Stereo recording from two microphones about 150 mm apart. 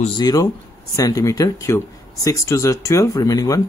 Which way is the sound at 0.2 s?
25° left (ahead or behind).